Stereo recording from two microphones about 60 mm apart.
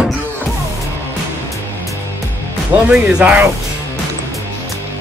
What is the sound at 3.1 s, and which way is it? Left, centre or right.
Speech, centre.